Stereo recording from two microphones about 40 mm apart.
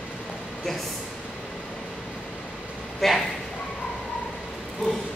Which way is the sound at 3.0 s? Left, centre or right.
Centre.